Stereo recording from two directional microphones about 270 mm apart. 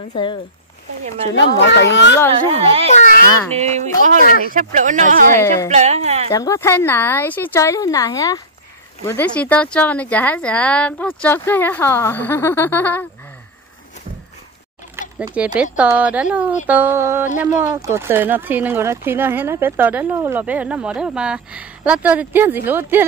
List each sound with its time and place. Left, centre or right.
0.1 s a woman's voice: centre
1.3 s a child's voice: left
2.9 s a child's voice: left
3.6 s speech: right
5.4 s a woman's voice: centre
5.7 s speech: right
6.3 s a woman's voice: centre
15.1 s speech: centre